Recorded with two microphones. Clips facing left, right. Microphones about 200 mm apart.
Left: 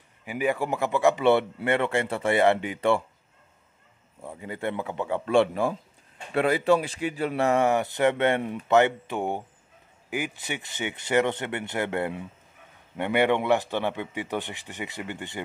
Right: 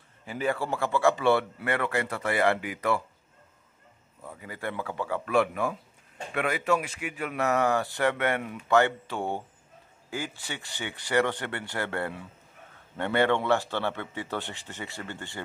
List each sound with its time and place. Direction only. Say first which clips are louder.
0.2 s speech: left 3 dB; 15° left (ahead or behind)
4.2 s a man's voice: left 5 dB; 25° left (ahead or behind)